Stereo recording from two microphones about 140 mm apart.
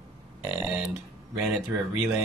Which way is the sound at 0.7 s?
5° right (ahead or behind).